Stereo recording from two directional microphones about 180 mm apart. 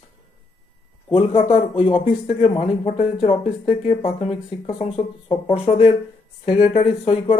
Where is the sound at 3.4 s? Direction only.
45° left (ahead or behind).